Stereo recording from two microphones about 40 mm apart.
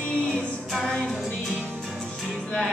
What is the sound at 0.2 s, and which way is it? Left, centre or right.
Music, centre.